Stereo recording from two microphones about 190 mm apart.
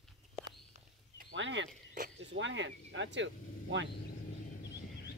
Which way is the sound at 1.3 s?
75° right (ahead or behind).